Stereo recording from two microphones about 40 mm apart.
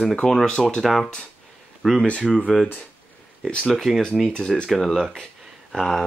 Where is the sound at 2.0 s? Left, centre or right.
Left.